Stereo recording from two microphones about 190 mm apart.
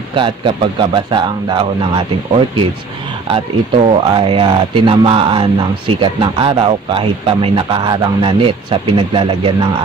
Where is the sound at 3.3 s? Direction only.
30° right (ahead or behind).